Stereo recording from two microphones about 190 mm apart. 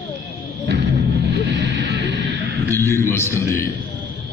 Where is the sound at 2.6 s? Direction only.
15° left (ahead or behind).